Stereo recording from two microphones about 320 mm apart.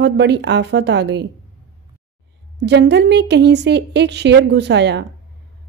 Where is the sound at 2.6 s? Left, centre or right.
Right.